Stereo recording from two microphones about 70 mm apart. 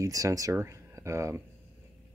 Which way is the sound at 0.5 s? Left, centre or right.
Right.